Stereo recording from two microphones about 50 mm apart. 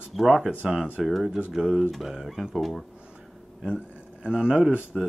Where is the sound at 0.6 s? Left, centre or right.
Centre.